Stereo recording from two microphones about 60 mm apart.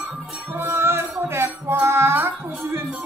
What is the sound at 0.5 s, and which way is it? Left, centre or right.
Music, right.